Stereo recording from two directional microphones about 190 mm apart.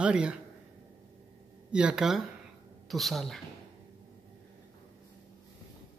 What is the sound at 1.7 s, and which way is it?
A woman's voice, 5° right (ahead or behind).